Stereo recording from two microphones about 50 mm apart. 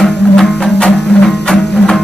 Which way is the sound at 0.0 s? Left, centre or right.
Centre.